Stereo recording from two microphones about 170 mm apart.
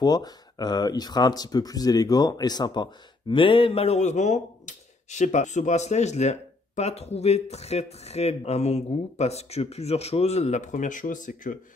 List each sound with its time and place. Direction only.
0.0 s speech: 25° left (ahead or behind); by 11.5 s 50° left (ahead or behind)